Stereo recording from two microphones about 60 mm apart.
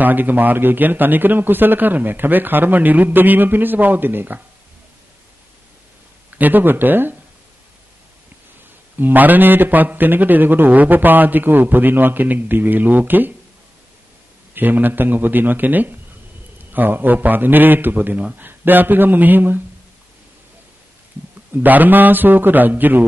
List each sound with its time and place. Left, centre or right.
0.0 s a man's voice: right
6.3 s a man's voice: right
8.9 s a man's voice: right
14.5 s a man's voice: right
21.5 s a man's voice: right